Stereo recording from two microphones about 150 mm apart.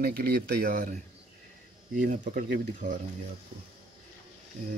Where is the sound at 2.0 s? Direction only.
55° right (ahead or behind).